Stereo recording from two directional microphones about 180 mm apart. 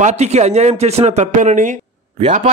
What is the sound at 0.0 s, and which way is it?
A man's voice, 40° right (ahead or behind).